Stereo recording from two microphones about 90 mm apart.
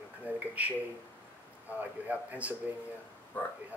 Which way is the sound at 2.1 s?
15° right (ahead or behind).